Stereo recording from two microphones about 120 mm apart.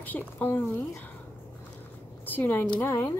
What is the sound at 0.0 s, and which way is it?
Speech, 15° left (ahead or behind).